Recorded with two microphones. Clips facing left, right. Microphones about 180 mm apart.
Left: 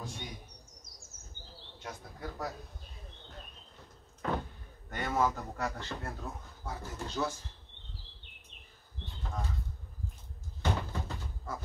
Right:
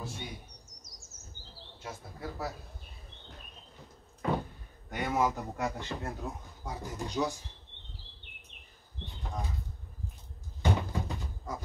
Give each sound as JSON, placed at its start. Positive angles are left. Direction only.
{"t": 0.0, "sound": "chirp", "side_deg": -5}
{"t": 1.8, "sound": "speech", "side_deg": -5}
{"t": 4.2, "sound": "speech", "side_deg": -10}
{"t": 9.0, "sound": "speech", "side_deg": -15}
{"t": 10.6, "sound": "door", "side_deg": -10}